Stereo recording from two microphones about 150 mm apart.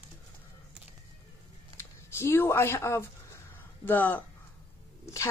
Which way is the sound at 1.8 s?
15° left (ahead or behind).